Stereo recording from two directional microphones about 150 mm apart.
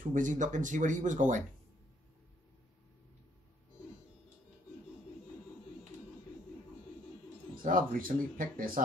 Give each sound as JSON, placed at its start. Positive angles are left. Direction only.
{"t": 0.0, "sound": "speech", "side_deg": -60}
{"t": 7.6, "sound": "speech", "side_deg": -65}